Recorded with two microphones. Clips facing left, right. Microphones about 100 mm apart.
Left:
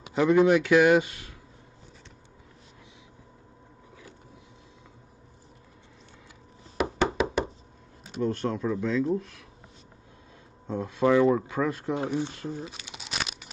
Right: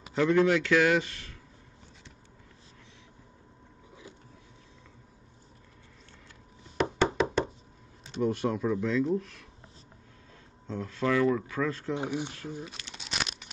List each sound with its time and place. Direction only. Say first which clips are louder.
0.1 s a man's voice: left 3 dB; 10° left (ahead or behind)
6.8 s knock: left 1 dB; 10° left (ahead or behind)
8.2 s speech: even; 10° right (ahead or behind)
10.7 s a man's voice: left 6 dB; 15° left (ahead or behind)
12.0 s speech: left 6 dB; 15° right (ahead or behind)
12.3 s speech: left 4 dB; 20° left (ahead or behind)
12.6 s crumpling: left 3 dB; 10° left (ahead or behind)